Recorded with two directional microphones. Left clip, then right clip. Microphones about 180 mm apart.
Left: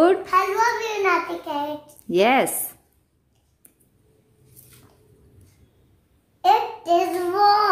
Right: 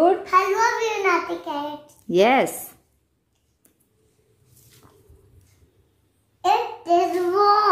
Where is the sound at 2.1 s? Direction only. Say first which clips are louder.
Right 1 dB; 5° right (ahead or behind).